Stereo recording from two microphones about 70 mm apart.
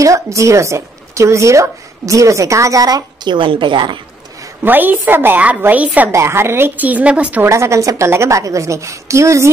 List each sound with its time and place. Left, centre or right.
0.0 s speech: right
4.6 s a woman's voice: right
6.1 s a woman's voice: right; by 7.4 s centre
7.4 s speech: right